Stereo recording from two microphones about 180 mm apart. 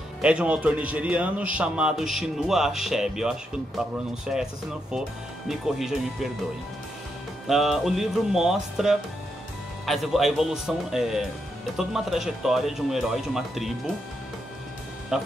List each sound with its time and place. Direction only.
0.2 s a man's voice: 5° right (ahead or behind)
5.5 s a man's voice: centre (ahead or behind)
7.4 s a man's voice: centre (ahead or behind)
15.1 s a man's voice: 5° right (ahead or behind)